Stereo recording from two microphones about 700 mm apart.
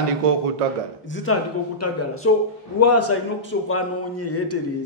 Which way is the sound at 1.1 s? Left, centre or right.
Centre.